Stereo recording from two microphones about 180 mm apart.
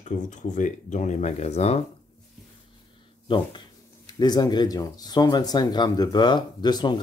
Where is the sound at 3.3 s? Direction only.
25° left (ahead or behind).